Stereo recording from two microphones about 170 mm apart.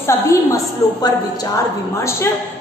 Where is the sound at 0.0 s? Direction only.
15° left (ahead or behind).